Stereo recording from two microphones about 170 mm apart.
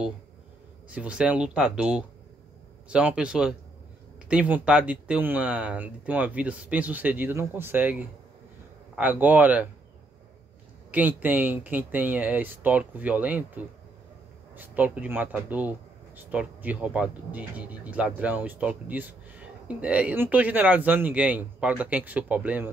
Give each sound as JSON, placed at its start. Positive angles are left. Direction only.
{"t": 0.8, "sound": "speech", "side_deg": -5}
{"t": 10.9, "sound": "speech", "side_deg": -10}